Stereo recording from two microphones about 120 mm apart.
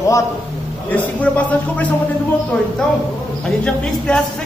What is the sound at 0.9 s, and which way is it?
Music, 10° left (ahead or behind).